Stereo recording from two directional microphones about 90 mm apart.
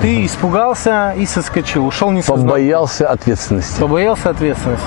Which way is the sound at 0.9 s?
15° left (ahead or behind).